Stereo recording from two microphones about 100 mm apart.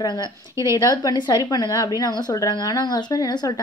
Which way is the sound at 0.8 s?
45° left (ahead or behind).